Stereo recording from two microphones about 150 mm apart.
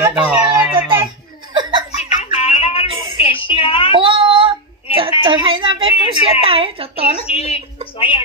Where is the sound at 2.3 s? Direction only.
40° left (ahead or behind).